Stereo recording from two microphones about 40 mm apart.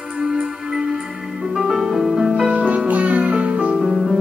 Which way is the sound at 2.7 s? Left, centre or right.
Right.